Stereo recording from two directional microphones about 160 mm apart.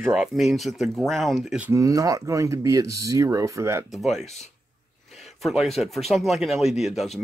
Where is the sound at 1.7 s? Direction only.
20° right (ahead or behind).